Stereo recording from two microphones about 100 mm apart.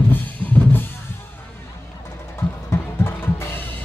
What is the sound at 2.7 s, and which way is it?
Drum kit, 25° left (ahead or behind).